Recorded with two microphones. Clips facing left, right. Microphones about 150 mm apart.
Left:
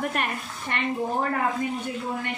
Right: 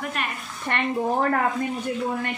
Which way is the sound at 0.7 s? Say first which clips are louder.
Right 3 dB; 55° right (ahead or behind).